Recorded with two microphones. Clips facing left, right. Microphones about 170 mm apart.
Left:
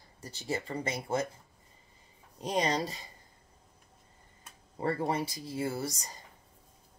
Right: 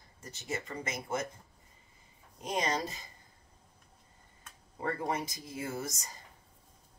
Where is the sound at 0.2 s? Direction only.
30° left (ahead or behind).